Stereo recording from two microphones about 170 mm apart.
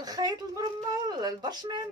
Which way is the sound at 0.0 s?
20° right (ahead or behind).